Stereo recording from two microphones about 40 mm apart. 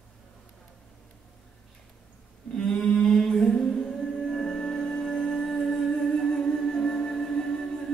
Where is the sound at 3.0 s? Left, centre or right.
Centre.